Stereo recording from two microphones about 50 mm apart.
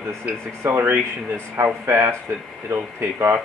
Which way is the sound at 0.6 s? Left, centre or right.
Right.